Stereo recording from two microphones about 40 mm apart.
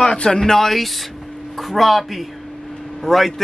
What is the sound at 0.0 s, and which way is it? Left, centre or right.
Speech, left.